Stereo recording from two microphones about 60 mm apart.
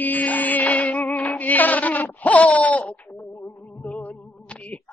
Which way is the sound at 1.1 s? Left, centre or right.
Left.